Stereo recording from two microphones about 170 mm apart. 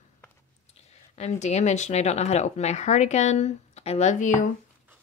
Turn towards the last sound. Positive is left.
turn(degrees=50)  # may be behind; listen again after turning